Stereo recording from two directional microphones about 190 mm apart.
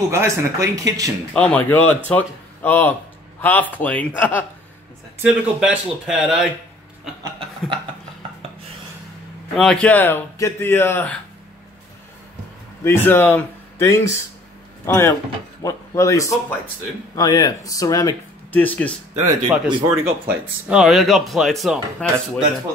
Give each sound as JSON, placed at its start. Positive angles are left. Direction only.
{"t": 0.1, "sound": "speech", "side_deg": -15}
{"t": 1.3, "sound": "speech", "side_deg": 5}
{"t": 5.2, "sound": "speech", "side_deg": -5}
{"t": 9.6, "sound": "speech", "side_deg": 5}
{"t": 12.8, "sound": "speech", "side_deg": 10}
{"t": 19.1, "sound": "speech", "side_deg": -15}